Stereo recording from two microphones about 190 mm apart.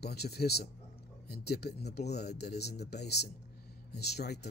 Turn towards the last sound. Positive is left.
turn(degrees=60)  # may be behind; listen again after turning